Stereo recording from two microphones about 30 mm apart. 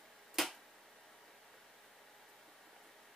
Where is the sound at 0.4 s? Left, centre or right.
Centre.